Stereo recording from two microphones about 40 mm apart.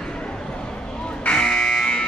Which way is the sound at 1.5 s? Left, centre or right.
Centre.